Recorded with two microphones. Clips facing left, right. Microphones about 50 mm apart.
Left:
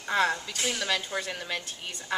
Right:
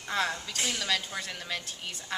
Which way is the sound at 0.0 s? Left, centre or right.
Centre.